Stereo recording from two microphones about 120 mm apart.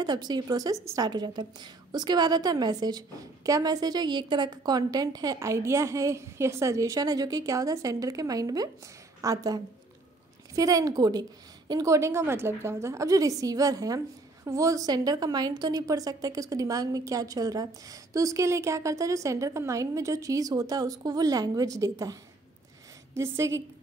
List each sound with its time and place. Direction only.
0.0 s a woman's voice: 35° right (ahead or behind)